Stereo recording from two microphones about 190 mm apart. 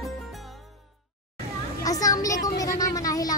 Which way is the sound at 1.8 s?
20° left (ahead or behind).